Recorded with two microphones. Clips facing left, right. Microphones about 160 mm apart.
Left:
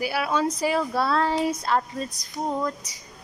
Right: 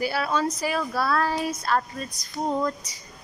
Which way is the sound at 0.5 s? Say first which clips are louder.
Left 3 dB; 25° left (ahead or behind).